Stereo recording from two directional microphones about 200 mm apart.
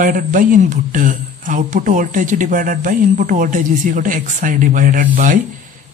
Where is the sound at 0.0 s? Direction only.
40° right (ahead or behind).